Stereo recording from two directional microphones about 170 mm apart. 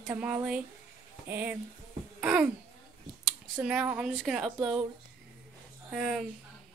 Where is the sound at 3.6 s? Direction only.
5° right (ahead or behind).